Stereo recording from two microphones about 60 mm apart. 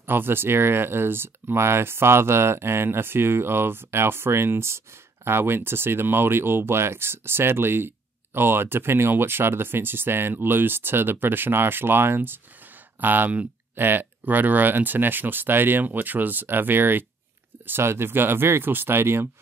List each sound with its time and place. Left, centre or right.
0.0 s speech: right